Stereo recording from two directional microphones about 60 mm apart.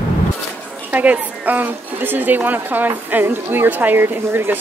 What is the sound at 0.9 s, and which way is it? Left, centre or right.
A woman's voice, right.